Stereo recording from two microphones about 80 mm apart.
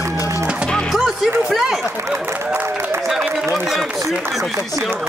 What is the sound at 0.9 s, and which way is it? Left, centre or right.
Music, centre.